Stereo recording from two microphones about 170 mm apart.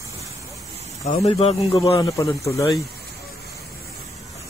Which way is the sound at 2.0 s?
20° left (ahead or behind).